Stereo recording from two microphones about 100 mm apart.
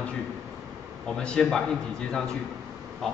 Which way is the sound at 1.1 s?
5° left (ahead or behind).